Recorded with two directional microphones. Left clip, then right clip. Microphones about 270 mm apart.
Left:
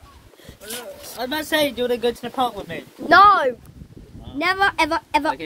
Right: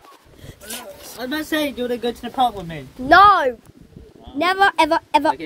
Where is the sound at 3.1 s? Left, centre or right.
Centre.